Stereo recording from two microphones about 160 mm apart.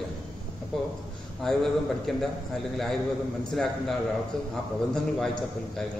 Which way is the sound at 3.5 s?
Centre (ahead or behind).